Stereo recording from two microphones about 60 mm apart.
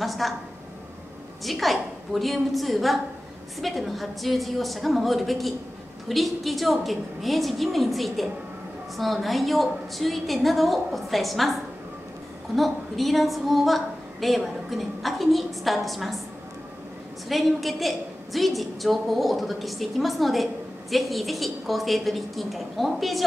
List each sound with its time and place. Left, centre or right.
0.0 s a woman's voice: centre
1.4 s a woman's voice: centre
12.5 s a woman's voice: centre
17.3 s a woman's voice: centre